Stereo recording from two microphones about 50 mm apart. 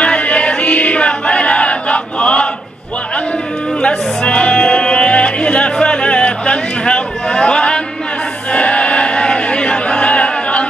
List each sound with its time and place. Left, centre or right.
0.0 s music: left
3.8 s music: centre
8.5 s a sound: left